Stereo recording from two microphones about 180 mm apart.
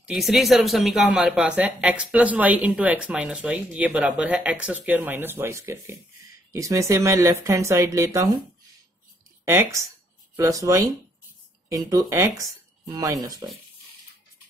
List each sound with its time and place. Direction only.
0.0 s speech: centre (ahead or behind); by 8.3 s 15° right (ahead or behind)
9.4 s speech: 15° right (ahead or behind)